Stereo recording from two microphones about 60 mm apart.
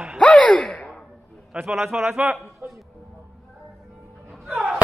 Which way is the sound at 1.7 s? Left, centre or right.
Centre.